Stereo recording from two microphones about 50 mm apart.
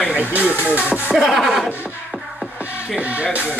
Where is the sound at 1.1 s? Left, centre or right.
Centre.